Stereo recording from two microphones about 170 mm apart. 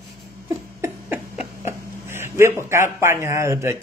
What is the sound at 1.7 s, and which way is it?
Speech, 15° right (ahead or behind).